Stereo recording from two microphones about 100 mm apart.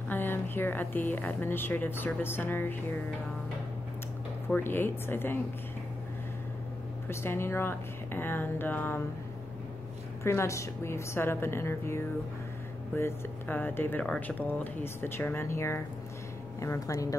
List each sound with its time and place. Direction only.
0.1 s speech: 20° left (ahead or behind)
4.6 s speech: 20° left (ahead or behind)
7.1 s speech: 25° left (ahead or behind)
10.2 s speech: 30° left (ahead or behind)